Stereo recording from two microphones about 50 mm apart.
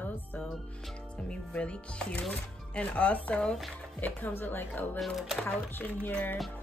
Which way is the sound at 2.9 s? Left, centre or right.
Left.